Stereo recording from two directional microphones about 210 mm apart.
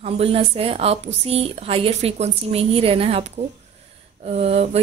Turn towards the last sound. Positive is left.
turn(degrees=-30)  # may be behind; listen again after turning